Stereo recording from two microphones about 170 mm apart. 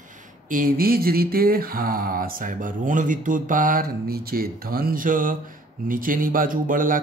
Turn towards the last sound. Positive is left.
turn(degrees=-55)  # may be behind; listen again after turning